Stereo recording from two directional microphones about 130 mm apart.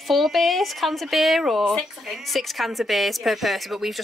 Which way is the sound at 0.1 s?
Centre (ahead or behind).